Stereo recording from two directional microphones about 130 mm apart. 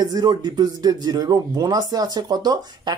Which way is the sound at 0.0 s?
30° right (ahead or behind).